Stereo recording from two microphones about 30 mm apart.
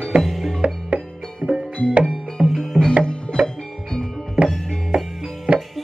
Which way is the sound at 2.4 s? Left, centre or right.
Centre.